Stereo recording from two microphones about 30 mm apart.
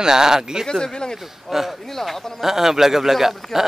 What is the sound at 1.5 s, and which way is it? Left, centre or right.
Speech, centre.